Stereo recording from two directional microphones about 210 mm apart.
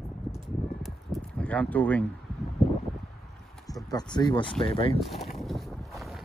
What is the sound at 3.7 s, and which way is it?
Speech, 20° left (ahead or behind).